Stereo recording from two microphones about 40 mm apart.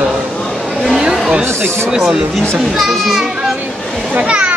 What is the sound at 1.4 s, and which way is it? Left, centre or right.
Speech, right.